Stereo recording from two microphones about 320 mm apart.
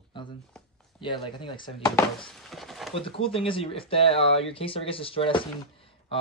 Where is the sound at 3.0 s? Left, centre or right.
Centre.